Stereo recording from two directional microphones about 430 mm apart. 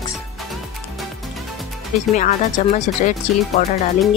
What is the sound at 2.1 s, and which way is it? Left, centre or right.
Speech, centre.